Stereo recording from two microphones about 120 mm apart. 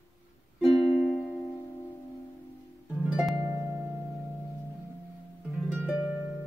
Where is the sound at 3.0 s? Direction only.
5° right (ahead or behind).